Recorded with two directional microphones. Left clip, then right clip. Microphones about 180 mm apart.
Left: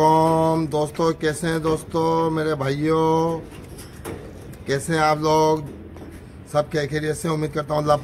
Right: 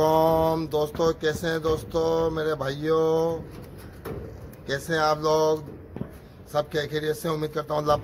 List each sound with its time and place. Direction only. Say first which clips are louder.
0.0 s speech: left 4 dB; 5° right (ahead or behind)
4.6 s speech: left 4 dB; centre (ahead or behind)